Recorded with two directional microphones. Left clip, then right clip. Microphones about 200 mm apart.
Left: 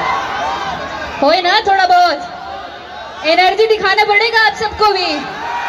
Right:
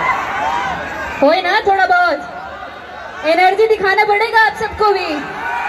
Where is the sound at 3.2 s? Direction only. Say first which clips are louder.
Left 1 dB; 30° right (ahead or behind).